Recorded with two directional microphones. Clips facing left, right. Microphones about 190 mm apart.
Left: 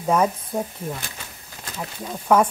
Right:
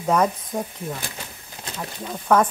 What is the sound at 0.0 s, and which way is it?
Speech, 5° left (ahead or behind).